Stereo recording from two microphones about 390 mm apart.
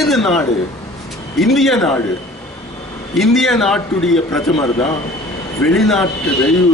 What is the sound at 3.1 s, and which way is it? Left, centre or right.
A man's voice, centre.